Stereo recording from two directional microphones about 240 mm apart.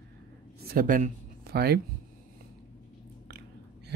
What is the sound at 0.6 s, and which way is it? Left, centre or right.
Speech, right.